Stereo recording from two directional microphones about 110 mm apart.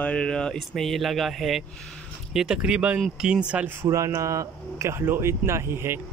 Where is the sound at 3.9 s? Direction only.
30° right (ahead or behind).